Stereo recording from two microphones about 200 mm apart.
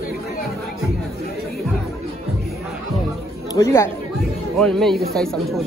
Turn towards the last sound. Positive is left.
turn(degrees=0)  # may be behind; listen again after turning